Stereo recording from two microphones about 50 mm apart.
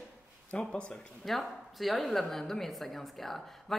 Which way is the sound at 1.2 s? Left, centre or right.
Centre.